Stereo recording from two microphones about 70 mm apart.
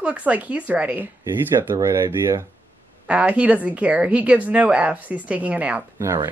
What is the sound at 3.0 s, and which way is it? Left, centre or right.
Speech, centre.